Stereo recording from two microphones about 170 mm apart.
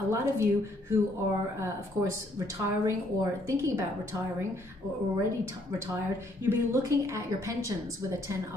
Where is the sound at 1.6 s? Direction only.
20° right (ahead or behind).